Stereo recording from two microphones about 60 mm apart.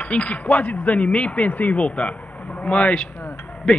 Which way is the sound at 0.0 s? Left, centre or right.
Left.